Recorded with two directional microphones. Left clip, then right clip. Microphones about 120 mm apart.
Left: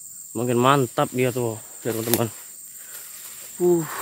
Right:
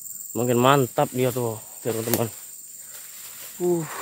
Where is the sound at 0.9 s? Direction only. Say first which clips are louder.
Even; 25° left (ahead or behind).